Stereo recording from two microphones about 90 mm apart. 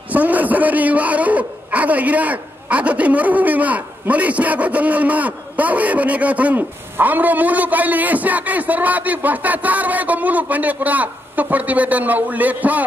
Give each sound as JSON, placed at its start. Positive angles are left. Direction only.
{"t": 0.1, "sound": "a man's voice", "side_deg": -20}